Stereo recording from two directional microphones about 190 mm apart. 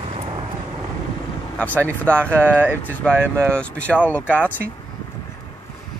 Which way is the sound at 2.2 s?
10° right (ahead or behind).